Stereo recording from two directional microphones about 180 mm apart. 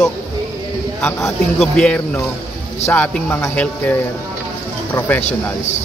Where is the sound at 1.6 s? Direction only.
5° left (ahead or behind).